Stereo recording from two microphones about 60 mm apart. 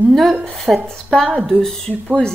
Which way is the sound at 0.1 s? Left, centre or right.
Centre.